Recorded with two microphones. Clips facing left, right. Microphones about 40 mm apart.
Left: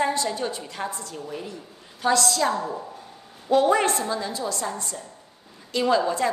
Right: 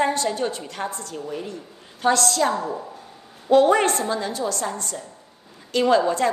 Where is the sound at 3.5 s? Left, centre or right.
Right.